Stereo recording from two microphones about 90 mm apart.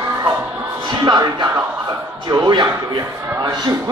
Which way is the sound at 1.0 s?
55° right (ahead or behind).